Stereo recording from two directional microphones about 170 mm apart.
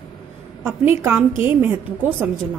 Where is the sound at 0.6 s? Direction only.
10° right (ahead or behind).